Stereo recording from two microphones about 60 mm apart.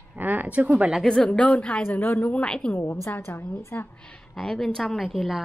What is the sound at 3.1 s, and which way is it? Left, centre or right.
Speech, left.